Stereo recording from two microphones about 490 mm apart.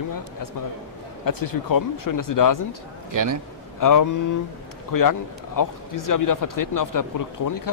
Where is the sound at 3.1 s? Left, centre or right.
Right.